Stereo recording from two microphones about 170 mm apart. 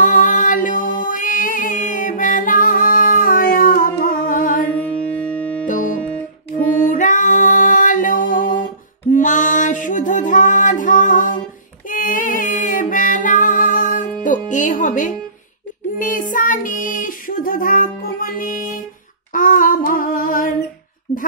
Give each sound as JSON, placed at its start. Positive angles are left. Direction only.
{"t": 0.0, "sound": "music", "side_deg": 50}
{"t": 4.7, "sound": "music", "side_deg": 10}
{"t": 5.7, "sound": "music", "side_deg": 50}
{"t": 9.1, "sound": "a sound", "side_deg": 50}
{"t": 11.9, "sound": "music", "side_deg": 50}
{"t": 16.0, "sound": "child singing", "side_deg": 50}
{"t": 19.3, "sound": "a sound", "side_deg": 50}